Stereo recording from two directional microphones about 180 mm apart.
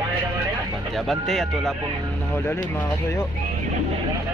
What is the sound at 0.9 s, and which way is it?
Speech, centre (ahead or behind).